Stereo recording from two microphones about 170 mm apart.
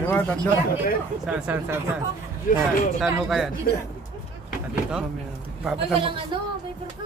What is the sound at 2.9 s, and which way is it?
Speech, 5° right (ahead or behind).